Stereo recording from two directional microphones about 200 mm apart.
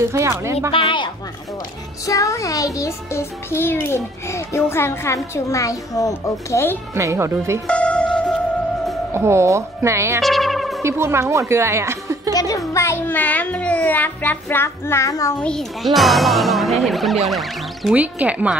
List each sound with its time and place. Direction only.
0.0 s speech: 15° right (ahead or behind)
0.7 s a child's voice: 25° left (ahead or behind)
7.0 s speech: 15° right (ahead or behind)
7.6 s music: 5° left (ahead or behind)
9.1 s speech: 15° right (ahead or behind)
10.2 s music: centre (ahead or behind)
10.8 s speech: 15° right (ahead or behind)
12.4 s a child's voice: 15° left (ahead or behind)
15.4 s speech: centre (ahead or behind)